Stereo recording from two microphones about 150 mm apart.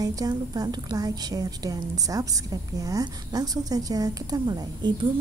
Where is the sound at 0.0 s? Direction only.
25° right (ahead or behind).